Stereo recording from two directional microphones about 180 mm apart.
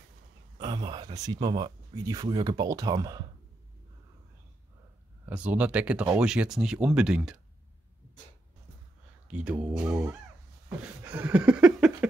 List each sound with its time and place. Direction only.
0.6 s speech: 25° right (ahead or behind)
5.2 s speech: 10° right (ahead or behind)
9.3 s speech: 5° right (ahead or behind)
11.1 s a sound: 10° right (ahead or behind)